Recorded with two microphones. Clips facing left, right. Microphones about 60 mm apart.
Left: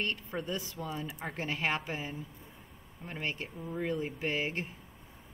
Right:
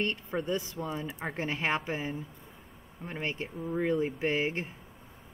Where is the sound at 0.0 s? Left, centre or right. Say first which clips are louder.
Right 4 dB; right.